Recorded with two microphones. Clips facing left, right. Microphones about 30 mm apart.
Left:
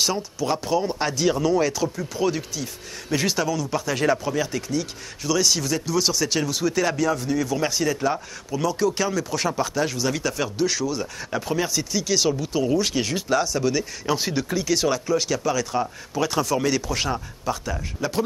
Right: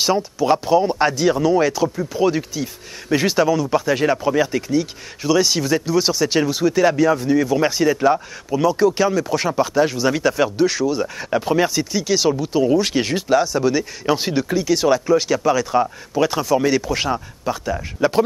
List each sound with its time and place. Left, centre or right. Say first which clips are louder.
0.0 s speech: right 6 dB; centre